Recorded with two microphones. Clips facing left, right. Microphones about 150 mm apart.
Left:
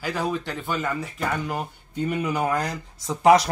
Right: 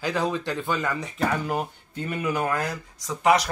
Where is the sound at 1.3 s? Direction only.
Centre (ahead or behind).